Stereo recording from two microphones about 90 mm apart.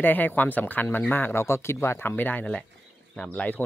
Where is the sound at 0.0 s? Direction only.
20° left (ahead or behind).